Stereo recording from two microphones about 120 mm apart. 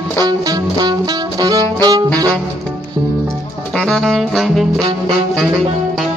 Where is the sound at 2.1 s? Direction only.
10° left (ahead or behind).